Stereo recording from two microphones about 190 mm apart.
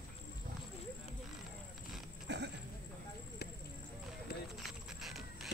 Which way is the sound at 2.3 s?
65° right (ahead or behind).